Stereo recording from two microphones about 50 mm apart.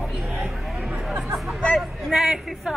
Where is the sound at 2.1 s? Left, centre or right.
Centre.